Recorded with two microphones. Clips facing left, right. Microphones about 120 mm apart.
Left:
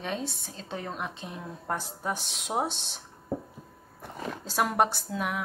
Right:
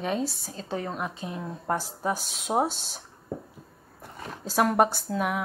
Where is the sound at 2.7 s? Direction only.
45° right (ahead or behind).